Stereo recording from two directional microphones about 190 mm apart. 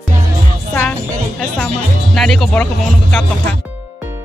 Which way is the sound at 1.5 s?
5° left (ahead or behind).